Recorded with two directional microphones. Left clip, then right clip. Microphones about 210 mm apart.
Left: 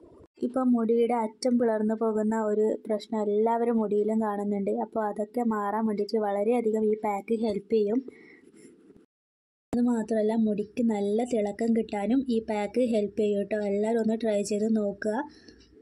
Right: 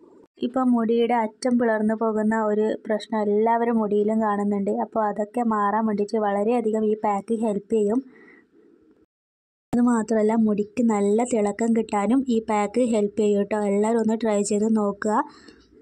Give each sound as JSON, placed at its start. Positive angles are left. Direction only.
{"t": 0.4, "sound": "speech", "side_deg": -15}
{"t": 9.8, "sound": "speech", "side_deg": -20}